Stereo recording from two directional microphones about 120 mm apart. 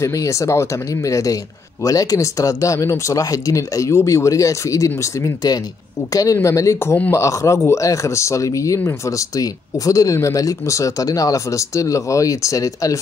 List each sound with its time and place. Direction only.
0.0 s speech: 25° left (ahead or behind)